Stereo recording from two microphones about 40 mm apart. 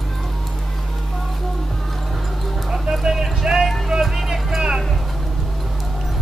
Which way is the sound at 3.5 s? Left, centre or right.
Centre.